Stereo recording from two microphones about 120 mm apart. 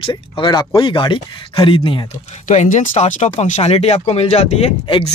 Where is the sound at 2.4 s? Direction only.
90° left; by 4.7 s 65° left (ahead or behind).